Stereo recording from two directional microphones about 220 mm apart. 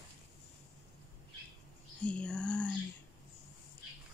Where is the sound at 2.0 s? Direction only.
5° left (ahead or behind).